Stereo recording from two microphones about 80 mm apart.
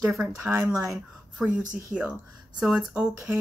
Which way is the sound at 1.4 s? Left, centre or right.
Centre.